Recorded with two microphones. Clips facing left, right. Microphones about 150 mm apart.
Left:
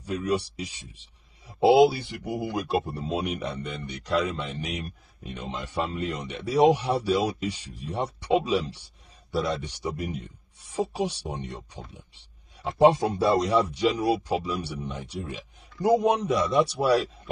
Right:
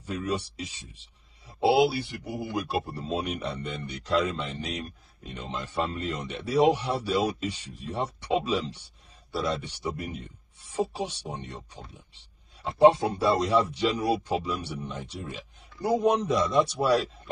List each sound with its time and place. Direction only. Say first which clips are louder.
0.0 s a man's voice: left 3 dB; 15° left (ahead or behind)